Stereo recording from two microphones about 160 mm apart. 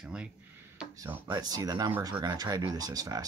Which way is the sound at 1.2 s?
25° right (ahead or behind).